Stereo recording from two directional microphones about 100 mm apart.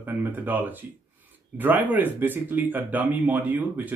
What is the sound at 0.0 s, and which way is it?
Speech, 20° right (ahead or behind).